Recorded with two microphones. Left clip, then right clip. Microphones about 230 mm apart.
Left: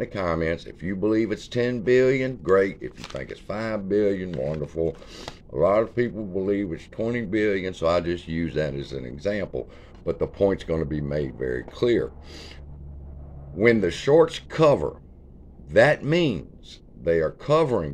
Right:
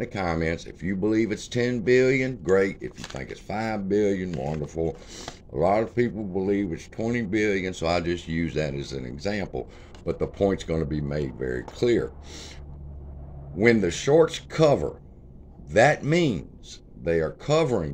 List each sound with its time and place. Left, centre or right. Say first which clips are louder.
0.3 s speech: left 2 dB; centre
6.7 s speech: left 1 dB; right
7.2 s speech: left 1 dB; centre
13.6 s speech: left 1 dB; centre